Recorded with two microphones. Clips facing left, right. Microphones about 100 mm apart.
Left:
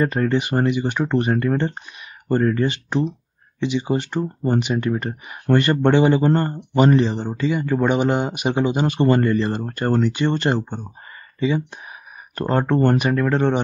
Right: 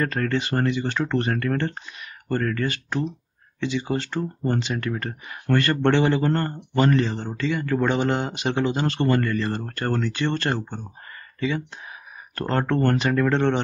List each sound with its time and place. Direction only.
0.0 s speech: 15° left (ahead or behind)